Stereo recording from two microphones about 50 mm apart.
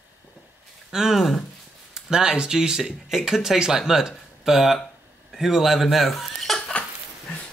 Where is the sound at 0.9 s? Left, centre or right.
Centre.